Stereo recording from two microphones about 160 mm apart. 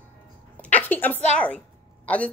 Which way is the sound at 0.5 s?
10° left (ahead or behind).